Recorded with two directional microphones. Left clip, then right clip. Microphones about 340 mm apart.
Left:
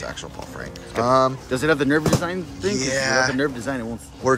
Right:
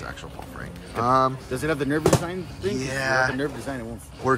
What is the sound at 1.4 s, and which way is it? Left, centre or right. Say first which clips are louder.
Speech: left 6 dB; left.